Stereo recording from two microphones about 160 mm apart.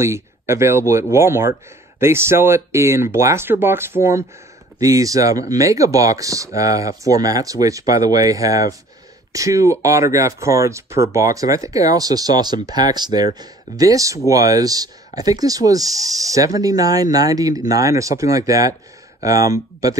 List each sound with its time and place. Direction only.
0.0 s speech: 15° right (ahead or behind)